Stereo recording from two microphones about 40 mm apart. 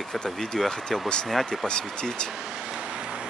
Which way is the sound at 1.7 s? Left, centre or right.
Left.